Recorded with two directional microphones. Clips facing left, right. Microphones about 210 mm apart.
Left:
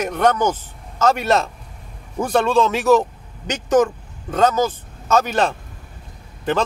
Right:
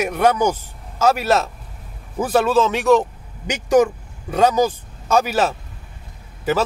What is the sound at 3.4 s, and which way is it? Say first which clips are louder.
A man's voice: right 1 dB; 10° right (ahead or behind).